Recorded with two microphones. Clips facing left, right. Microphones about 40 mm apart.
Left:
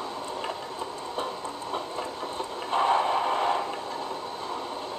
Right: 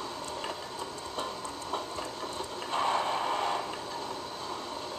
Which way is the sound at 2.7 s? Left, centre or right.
Centre.